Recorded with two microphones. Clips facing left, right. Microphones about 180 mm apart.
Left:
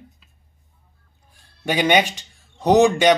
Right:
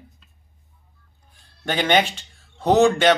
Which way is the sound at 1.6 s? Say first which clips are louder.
Left 2 dB; 15° left (ahead or behind).